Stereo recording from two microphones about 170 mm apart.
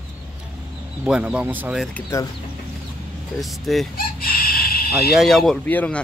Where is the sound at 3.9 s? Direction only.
60° left (ahead or behind).